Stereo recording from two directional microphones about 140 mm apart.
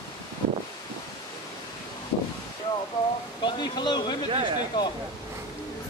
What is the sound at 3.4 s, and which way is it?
Speech, 30° left (ahead or behind).